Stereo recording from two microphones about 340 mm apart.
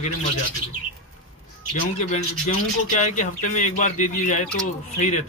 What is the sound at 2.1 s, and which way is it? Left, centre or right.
Speech, centre.